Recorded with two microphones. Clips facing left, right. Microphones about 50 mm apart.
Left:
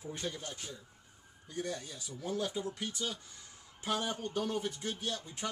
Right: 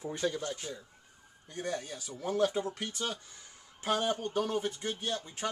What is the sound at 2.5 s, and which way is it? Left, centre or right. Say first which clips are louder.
Speech: right 3 dB; right.